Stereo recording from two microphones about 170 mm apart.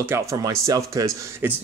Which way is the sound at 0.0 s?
15° right (ahead or behind).